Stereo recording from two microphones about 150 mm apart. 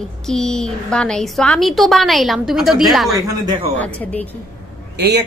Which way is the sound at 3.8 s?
10° left (ahead or behind).